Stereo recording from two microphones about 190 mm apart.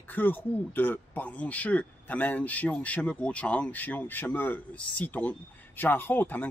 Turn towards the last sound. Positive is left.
turn(degrees=10)  # may be behind; listen again after turning